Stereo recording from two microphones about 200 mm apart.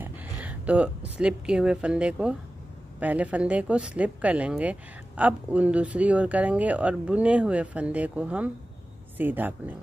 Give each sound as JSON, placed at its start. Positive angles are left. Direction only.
{"t": 0.0, "sound": "a woman's voice", "side_deg": -10}